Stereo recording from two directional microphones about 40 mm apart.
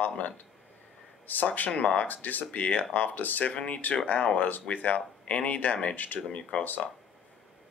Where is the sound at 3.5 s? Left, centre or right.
Left.